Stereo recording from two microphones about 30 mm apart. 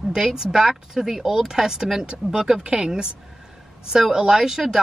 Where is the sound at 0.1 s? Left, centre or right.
Centre.